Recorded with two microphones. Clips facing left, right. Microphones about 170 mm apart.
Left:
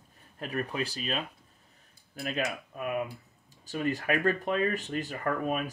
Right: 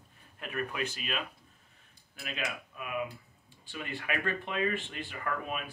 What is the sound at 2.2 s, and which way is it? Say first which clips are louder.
Speech: left 6 dB; 40° left (ahead or behind).